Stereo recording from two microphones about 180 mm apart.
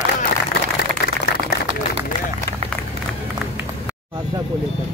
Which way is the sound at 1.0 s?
70° left (ahead or behind).